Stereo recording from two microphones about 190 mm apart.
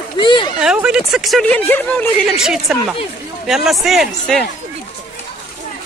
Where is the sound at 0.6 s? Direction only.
5° right (ahead or behind).